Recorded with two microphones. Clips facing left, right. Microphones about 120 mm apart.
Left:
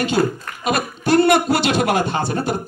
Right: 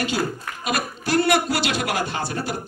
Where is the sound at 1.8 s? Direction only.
25° left (ahead or behind).